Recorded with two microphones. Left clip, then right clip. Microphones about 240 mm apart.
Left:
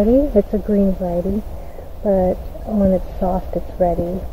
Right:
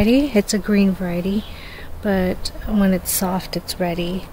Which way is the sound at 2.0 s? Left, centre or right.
Right.